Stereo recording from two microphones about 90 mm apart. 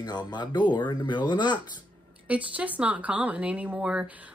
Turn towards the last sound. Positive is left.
turn(degrees=-15)  # may be behind; listen again after turning